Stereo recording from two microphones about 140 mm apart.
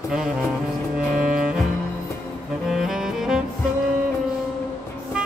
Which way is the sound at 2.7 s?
5° right (ahead or behind).